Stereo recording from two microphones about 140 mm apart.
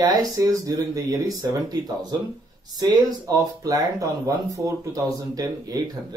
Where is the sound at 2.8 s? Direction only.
30° right (ahead or behind).